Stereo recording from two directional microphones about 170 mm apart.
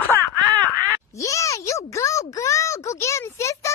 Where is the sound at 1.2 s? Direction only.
20° left (ahead or behind).